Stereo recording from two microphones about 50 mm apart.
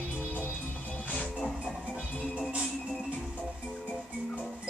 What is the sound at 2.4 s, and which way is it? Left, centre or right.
Music, right.